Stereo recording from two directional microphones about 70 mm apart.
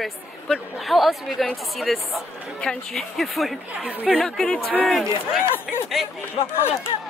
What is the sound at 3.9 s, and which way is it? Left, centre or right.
Speech, right.